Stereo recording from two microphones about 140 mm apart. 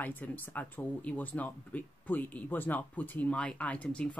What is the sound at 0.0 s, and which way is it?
Speech, 10° left (ahead or behind).